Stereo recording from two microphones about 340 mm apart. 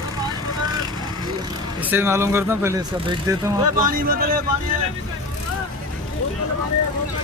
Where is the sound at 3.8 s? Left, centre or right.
Right.